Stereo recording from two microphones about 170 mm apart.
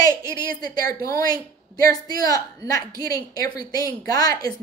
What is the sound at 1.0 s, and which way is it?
A woman's voice, 20° left (ahead or behind).